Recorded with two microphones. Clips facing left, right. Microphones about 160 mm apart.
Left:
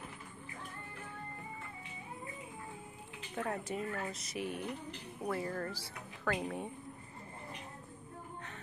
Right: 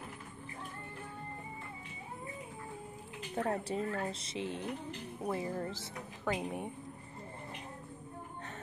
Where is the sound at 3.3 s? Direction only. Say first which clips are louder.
Right 3 dB; 35° right (ahead or behind); by 6.7 s 15° right (ahead or behind).